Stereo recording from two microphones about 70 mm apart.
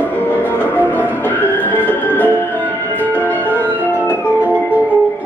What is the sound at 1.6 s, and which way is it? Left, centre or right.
Music, left.